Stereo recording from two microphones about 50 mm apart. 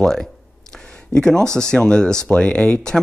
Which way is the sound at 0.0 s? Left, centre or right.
Centre.